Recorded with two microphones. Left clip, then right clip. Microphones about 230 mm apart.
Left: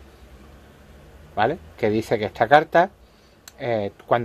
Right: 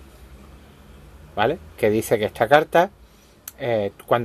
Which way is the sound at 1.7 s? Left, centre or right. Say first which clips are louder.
Right 2 dB; centre.